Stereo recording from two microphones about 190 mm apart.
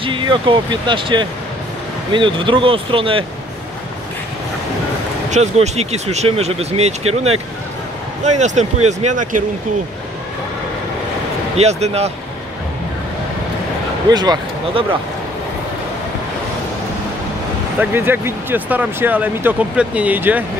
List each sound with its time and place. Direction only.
0.0 s speech: 25° right (ahead or behind)
5.3 s speech: 35° right (ahead or behind)
7.1 s speech: 90° right
8.2 s speech: 40° right (ahead or behind)
11.5 s speech: 35° right (ahead or behind)
14.1 s speech: 20° right (ahead or behind)
17.7 s speech: 10° right (ahead or behind)